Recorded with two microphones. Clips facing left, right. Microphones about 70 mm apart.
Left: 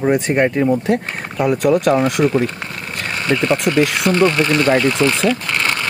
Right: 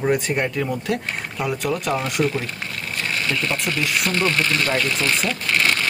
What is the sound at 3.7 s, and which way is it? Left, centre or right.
Speech, centre.